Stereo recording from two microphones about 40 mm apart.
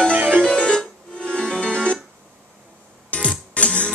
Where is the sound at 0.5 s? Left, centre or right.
Centre.